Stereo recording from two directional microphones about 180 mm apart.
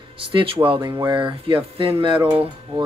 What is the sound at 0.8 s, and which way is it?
Speech, 15° right (ahead or behind).